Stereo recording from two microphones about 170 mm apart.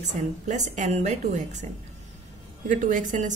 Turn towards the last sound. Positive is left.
turn(degrees=-50)  # may be behind; listen again after turning